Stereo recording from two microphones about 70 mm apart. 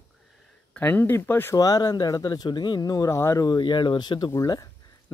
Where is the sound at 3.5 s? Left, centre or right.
Left.